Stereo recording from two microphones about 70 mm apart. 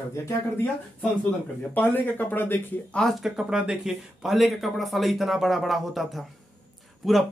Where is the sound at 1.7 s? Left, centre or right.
Left.